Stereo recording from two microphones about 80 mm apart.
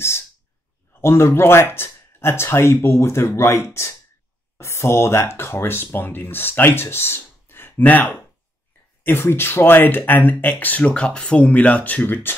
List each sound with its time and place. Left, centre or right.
1.0 s speech: left